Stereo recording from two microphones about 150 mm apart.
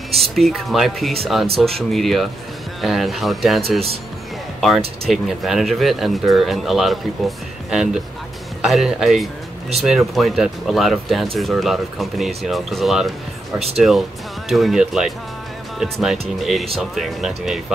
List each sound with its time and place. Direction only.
0.2 s speech: centre (ahead or behind)
13.6 s speech: 40° right (ahead or behind)
14.5 s speech: centre (ahead or behind)